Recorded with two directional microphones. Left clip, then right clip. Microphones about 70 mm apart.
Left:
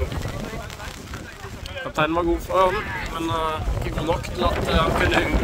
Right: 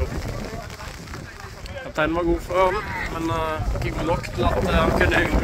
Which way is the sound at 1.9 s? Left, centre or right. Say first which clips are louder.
Even; left.